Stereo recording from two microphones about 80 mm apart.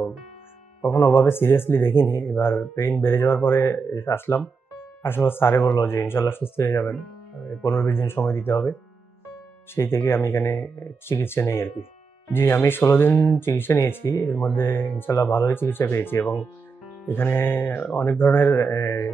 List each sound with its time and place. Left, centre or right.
0.8 s speech: left
9.8 s speech: left